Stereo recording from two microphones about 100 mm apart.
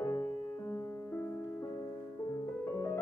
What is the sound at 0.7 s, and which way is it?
Music, 20° left (ahead or behind).